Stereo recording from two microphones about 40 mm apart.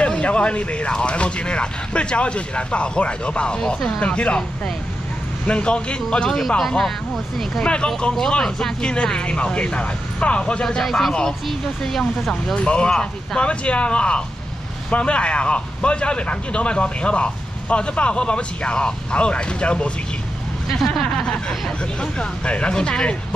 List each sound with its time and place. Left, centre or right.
0.0 s speech: left
5.5 s speech: left
7.6 s speech: left
10.8 s speech: centre
12.5 s speech: left
20.8 s speech: centre
21.3 s speech: centre